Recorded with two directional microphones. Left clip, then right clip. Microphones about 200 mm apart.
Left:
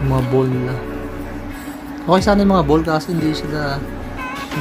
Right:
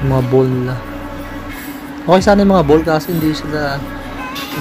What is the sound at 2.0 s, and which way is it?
Speech, 15° right (ahead or behind).